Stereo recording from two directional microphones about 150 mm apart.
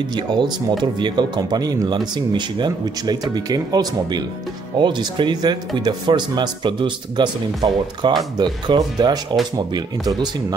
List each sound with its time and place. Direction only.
0.0 s speech: 30° right (ahead or behind)